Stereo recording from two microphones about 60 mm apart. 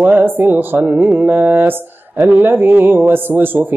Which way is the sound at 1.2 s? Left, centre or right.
Right.